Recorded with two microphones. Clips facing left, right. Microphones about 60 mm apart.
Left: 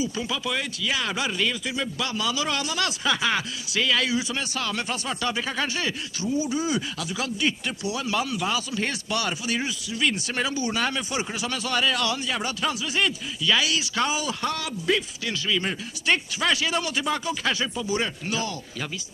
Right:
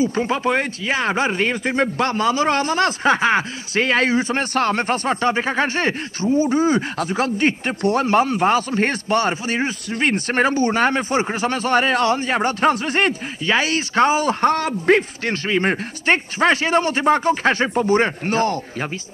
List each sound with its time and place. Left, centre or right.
0.0 s speech: right